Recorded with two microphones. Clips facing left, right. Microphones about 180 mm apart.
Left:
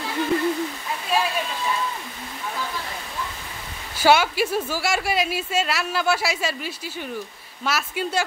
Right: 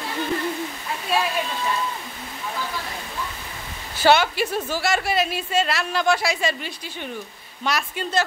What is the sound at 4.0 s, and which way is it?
A woman's voice, 10° left (ahead or behind).